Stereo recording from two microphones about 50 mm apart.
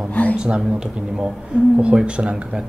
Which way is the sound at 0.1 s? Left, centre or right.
Left.